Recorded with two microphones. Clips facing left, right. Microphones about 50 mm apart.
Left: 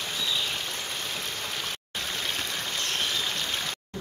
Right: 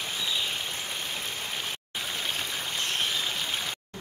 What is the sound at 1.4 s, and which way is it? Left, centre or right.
Stream, centre.